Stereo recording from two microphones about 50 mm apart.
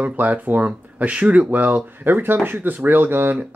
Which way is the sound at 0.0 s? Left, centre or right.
Right.